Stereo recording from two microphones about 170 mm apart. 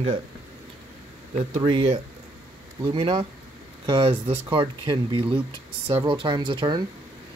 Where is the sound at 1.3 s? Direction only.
35° right (ahead or behind).